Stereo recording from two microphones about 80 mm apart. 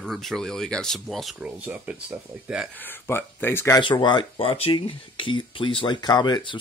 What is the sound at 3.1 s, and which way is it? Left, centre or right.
Speech, left.